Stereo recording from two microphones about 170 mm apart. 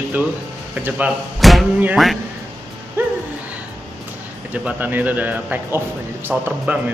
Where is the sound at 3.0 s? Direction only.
10° right (ahead or behind).